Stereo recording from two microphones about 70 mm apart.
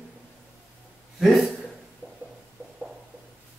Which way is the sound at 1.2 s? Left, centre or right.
Centre.